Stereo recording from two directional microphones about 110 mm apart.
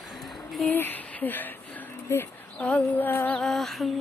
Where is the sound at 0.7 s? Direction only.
15° left (ahead or behind); by 3.9 s centre (ahead or behind).